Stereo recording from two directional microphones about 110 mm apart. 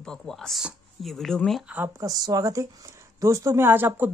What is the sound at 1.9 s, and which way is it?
A woman's voice, 35° right (ahead or behind).